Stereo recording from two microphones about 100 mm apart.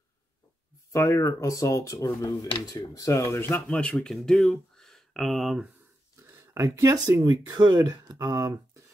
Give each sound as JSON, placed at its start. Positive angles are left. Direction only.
{"t": 0.9, "sound": "speech", "side_deg": 30}
{"t": 6.1, "sound": "speech", "side_deg": -30}